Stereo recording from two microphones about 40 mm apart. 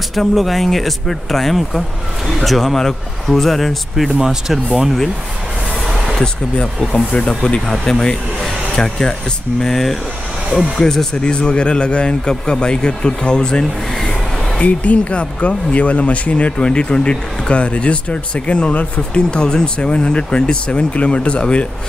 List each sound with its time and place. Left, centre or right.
0.1 s speech: centre
4.2 s speech: centre
5.9 s a sound: centre
7.1 s speech: left
14.6 s speech: left
19.3 s speech: left